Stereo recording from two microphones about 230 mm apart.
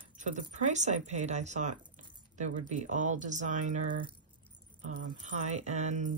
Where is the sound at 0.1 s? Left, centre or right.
Right.